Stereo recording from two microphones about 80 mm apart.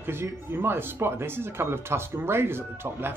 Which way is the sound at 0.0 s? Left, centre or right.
Right.